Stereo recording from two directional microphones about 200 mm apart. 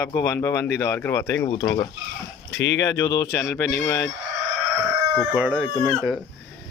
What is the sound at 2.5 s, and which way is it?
Speech, 65° left (ahead or behind).